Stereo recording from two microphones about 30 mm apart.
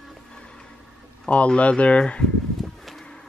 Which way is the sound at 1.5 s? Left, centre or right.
Left.